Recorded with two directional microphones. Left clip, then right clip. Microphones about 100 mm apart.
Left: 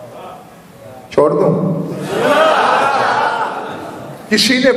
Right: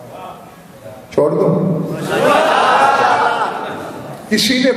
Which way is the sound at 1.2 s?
35° left (ahead or behind).